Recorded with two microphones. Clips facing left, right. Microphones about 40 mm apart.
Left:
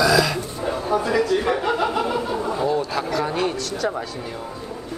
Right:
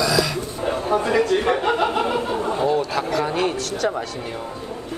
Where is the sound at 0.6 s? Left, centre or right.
Right.